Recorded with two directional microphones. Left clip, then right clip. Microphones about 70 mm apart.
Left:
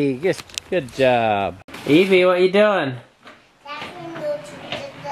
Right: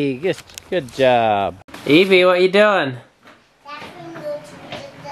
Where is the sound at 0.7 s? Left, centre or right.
Right.